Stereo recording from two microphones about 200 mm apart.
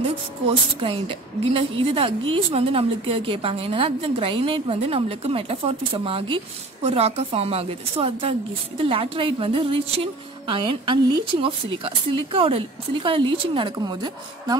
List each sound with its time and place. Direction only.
0.7 s a woman's voice: 25° right (ahead or behind)